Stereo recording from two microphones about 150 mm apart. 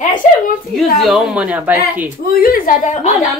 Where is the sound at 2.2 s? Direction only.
80° left; by 3.0 s 65° left (ahead or behind).